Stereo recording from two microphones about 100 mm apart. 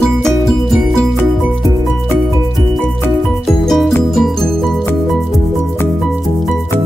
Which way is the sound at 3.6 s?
Centre (ahead or behind).